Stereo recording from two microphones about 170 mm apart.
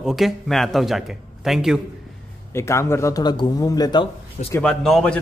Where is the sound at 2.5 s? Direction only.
15° left (ahead or behind).